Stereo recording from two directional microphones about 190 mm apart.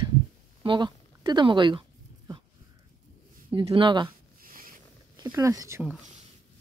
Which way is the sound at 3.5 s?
25° right (ahead or behind).